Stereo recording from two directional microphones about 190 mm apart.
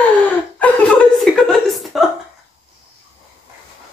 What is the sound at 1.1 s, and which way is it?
Chuckle, centre (ahead or behind).